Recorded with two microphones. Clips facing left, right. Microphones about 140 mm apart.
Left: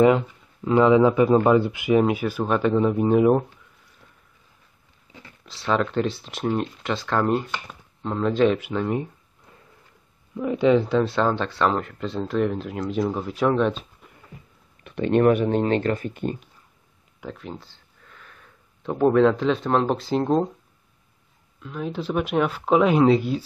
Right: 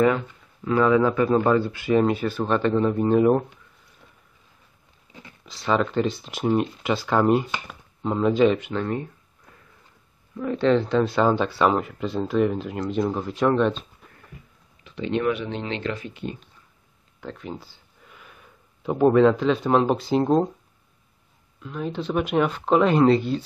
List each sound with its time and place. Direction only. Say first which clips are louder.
0.7 s speech: left 3 dB; 20° left (ahead or behind)
5.4 s speech: right 1 dB; centre (ahead or behind)
10.3 s speech: left 2 dB; 15° left (ahead or behind)
11.1 s speech: right 2 dB; 5° right (ahead or behind)
14.8 s speech: left 6 dB; 55° left (ahead or behind)
17.2 s speech: right 1 dB; centre (ahead or behind)
21.5 s speech: even; centre (ahead or behind)